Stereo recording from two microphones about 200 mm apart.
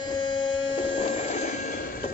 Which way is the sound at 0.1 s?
25° left (ahead or behind).